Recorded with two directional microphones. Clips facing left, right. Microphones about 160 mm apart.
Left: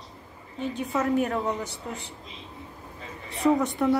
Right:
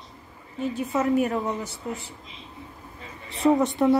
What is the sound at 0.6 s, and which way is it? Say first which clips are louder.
A woman's voice: right 2 dB; 5° right (ahead or behind).